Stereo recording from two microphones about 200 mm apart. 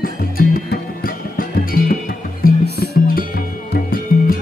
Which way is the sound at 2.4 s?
45° left (ahead or behind).